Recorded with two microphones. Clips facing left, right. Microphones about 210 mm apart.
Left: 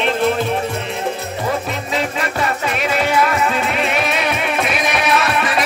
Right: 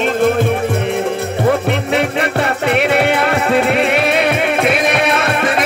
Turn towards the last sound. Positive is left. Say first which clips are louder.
# right 2 dB
turn(degrees=-55)  # may be behind; listen again after turning